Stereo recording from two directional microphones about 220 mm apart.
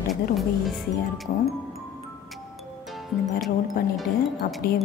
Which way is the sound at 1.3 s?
40° left (ahead or behind).